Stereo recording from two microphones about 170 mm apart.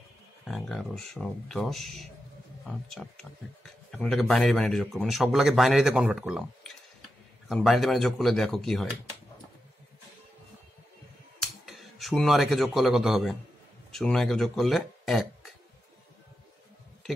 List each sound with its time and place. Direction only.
0.5 s speech: centre (ahead or behind)
11.6 s a man's voice: centre (ahead or behind)